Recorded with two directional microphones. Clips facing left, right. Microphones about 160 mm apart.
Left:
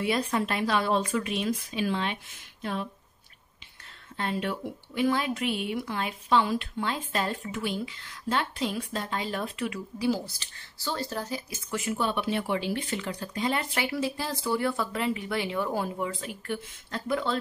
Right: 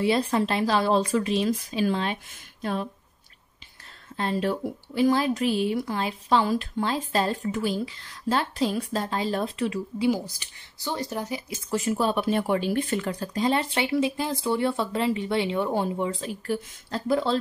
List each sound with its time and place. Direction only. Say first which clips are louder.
0.0 s a woman's voice: right 4 dB; 30° right (ahead or behind)
4.2 s a woman's voice: right 5 dB; 35° right (ahead or behind)
10.0 s speech: right 2 dB; 15° right (ahead or behind)
11.7 s a woman's voice: right 5 dB; 35° right (ahead or behind)